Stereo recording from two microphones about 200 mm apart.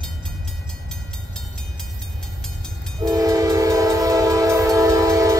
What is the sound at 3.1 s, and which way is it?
Train, 15° right (ahead or behind).